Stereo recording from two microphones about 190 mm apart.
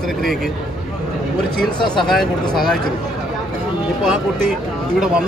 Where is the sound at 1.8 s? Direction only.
25° left (ahead or behind).